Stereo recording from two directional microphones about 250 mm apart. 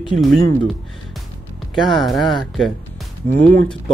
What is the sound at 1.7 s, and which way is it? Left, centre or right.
Speech, centre.